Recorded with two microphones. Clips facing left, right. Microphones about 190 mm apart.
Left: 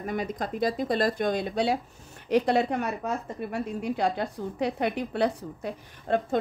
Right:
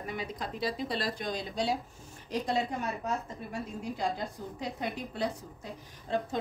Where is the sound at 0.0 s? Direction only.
50° left (ahead or behind).